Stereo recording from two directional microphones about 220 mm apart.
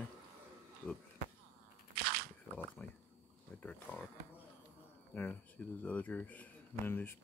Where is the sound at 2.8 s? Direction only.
5° left (ahead or behind).